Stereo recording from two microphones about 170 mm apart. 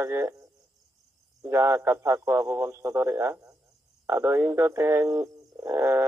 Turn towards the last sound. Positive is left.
turn(degrees=-15)  # may be behind; listen again after turning